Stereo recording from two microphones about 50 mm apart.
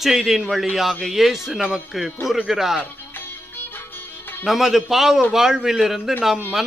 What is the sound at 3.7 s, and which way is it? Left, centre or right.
Music, left.